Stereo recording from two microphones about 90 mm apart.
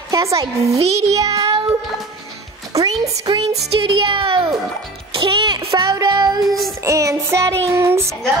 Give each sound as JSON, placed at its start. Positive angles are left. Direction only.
{"t": 0.1, "sound": "a child's voice", "side_deg": -35}
{"t": 2.7, "sound": "a child's voice", "side_deg": -40}
{"t": 3.8, "sound": "speech", "side_deg": -80}
{"t": 5.1, "sound": "music", "side_deg": -70}
{"t": 5.8, "sound": "music", "side_deg": -40}
{"t": 6.8, "sound": "music", "side_deg": -35}